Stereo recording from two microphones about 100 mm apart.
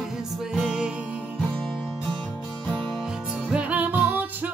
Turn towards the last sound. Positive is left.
turn(degrees=-15)  # may be behind; listen again after turning